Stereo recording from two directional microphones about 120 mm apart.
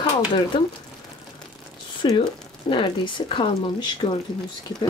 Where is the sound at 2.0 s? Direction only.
40° left (ahead or behind).